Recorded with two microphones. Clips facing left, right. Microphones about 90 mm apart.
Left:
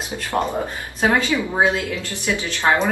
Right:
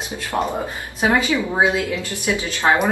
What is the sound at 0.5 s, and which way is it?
A woman's voice, 15° right (ahead or behind).